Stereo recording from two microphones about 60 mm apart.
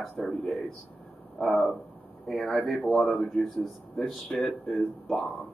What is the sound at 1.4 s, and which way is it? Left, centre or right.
Speech, centre.